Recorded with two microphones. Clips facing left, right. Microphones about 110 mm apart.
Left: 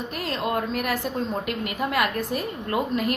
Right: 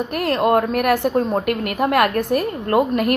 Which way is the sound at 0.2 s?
60° right (ahead or behind).